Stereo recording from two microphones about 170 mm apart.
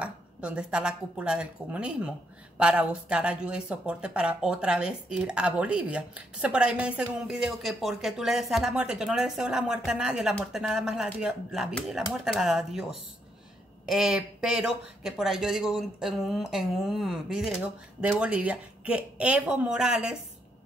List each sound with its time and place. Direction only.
0.0 s a woman's voice: 5° right (ahead or behind)
13.8 s a woman's voice: 5° right (ahead or behind)